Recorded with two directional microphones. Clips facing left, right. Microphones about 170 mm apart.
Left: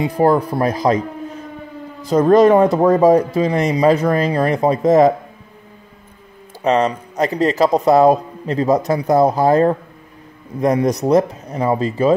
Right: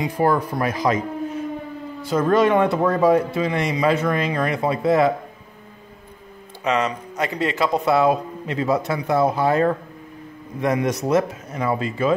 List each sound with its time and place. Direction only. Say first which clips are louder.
0.0 s speech: left 5 dB; 35° left (ahead or behind)
6.6 s speech: left 6 dB; 35° left (ahead or behind)